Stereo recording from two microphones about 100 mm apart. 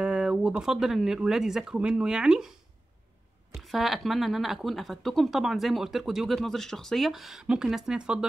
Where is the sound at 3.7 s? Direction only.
Centre (ahead or behind).